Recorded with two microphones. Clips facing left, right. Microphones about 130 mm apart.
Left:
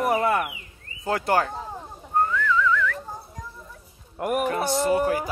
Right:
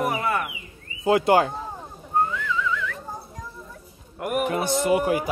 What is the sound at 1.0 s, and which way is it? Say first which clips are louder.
Speech: right 5 dB; 20° right (ahead or behind).